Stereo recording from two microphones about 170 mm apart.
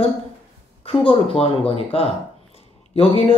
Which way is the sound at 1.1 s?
35° left (ahead or behind).